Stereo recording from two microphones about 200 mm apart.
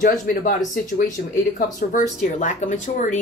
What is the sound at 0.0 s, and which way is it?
Speech, 45° left (ahead or behind).